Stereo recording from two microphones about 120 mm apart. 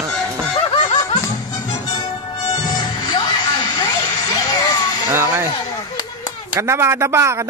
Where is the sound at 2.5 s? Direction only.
35° left (ahead or behind).